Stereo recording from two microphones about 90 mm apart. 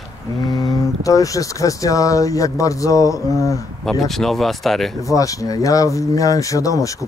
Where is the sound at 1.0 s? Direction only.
40° left (ahead or behind).